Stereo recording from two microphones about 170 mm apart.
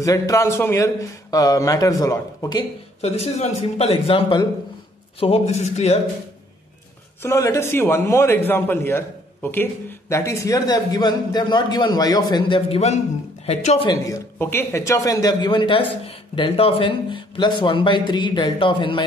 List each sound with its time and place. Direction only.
0.0 s a man's voice: 20° left (ahead or behind)
3.0 s a man's voice: 40° left (ahead or behind)
7.2 s a man's voice: 15° left (ahead or behind); by 13.8 s 40° left (ahead or behind)
13.8 s a man's voice: 20° left (ahead or behind)